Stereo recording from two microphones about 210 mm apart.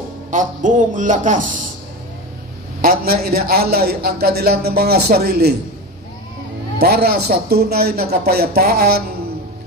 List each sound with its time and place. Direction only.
0.3 s a man's voice: 35° right (ahead or behind)
2.8 s a man's voice: 45° right (ahead or behind)
6.8 s a man's voice: 50° right (ahead or behind)